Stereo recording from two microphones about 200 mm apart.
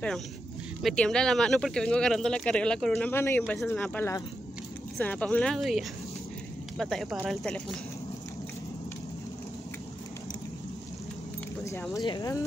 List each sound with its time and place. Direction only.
0.8 s speech: 5° left (ahead or behind)
11.6 s speech: 15° left (ahead or behind)